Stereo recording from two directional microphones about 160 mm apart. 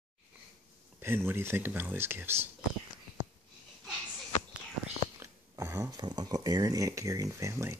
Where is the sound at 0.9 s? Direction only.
15° right (ahead or behind).